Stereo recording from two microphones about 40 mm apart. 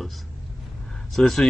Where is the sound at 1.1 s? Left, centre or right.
Centre.